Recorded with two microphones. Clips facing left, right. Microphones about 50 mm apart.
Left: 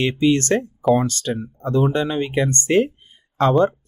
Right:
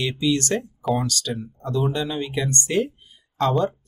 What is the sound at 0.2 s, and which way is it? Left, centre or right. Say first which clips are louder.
Speech: left 5 dB; left.